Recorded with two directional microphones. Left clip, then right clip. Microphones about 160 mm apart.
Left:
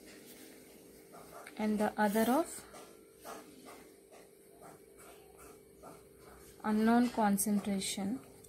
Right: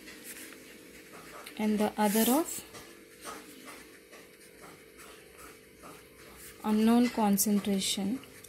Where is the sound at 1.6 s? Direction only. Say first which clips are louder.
Right 3 dB; 20° right (ahead or behind).